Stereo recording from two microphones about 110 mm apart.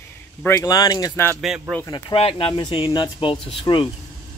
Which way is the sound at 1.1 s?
20° left (ahead or behind).